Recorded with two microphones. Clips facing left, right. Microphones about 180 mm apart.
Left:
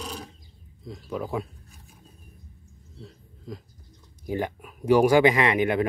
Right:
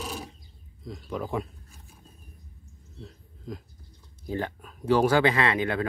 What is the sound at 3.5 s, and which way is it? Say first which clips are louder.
Speech: right 1 dB; centre (ahead or behind).